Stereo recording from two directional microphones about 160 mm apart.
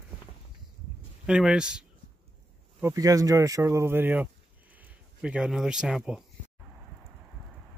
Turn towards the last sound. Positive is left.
turn(degrees=-5)  # may be behind; listen again after turning